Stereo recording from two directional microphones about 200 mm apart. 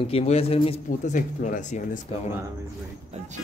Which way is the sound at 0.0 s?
30° left (ahead or behind).